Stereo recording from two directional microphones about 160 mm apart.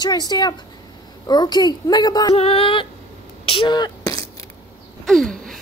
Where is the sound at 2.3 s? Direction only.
35° left (ahead or behind); by 4.5 s 20° left (ahead or behind).